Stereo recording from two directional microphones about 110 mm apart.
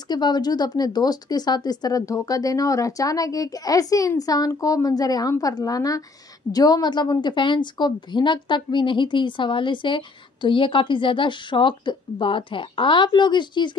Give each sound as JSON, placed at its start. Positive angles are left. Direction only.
{"t": 0.1, "sound": "a woman's voice", "side_deg": 40}